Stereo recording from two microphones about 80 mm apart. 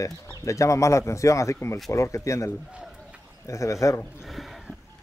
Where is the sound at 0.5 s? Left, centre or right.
Left.